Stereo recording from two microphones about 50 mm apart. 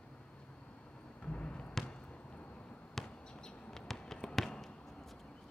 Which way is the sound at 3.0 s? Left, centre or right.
Centre.